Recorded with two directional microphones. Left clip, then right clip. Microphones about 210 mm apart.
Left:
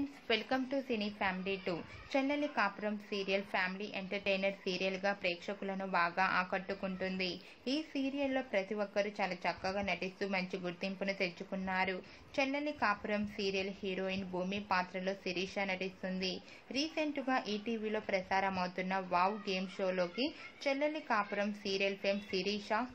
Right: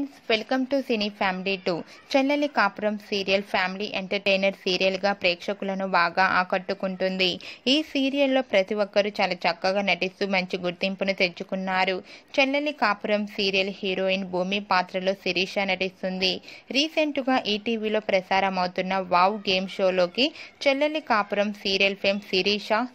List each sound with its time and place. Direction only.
0.3 s a woman's voice: 35° right (ahead or behind)